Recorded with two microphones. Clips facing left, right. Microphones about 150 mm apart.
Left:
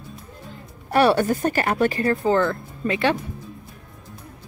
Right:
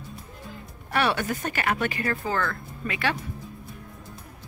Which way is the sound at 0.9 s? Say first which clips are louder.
Left 8 dB; 40° left (ahead or behind).